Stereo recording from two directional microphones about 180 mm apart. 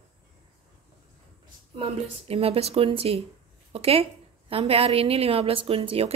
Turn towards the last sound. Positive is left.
turn(degrees=-30)  # may be behind; listen again after turning